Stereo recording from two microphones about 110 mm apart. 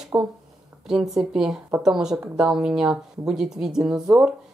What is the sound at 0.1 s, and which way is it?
Speech, 25° right (ahead or behind).